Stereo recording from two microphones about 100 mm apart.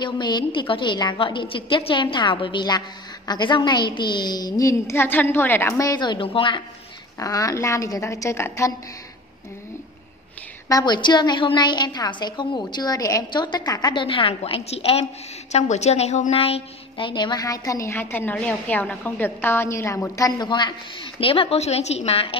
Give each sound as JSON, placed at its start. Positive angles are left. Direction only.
{"t": 0.0, "sound": "a woman's voice", "side_deg": 50}
{"t": 5.9, "sound": "a woman's voice", "side_deg": 50}
{"t": 7.2, "sound": "a woman's voice", "side_deg": 35}
{"t": 10.7, "sound": "a woman's voice", "side_deg": 45}
{"t": 14.0, "sound": "a woman's voice", "side_deg": 65}
{"t": 20.4, "sound": "a woman's voice", "side_deg": 50}
{"t": 21.2, "sound": "a woman's voice", "side_deg": 65}